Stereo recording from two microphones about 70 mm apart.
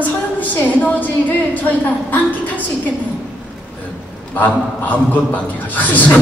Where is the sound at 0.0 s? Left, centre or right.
Left.